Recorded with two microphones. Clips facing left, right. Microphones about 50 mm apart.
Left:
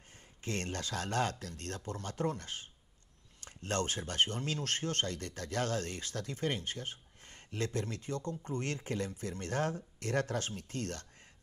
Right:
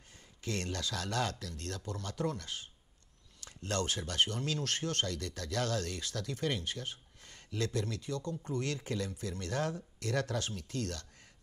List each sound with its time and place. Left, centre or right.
0.4 s speech: left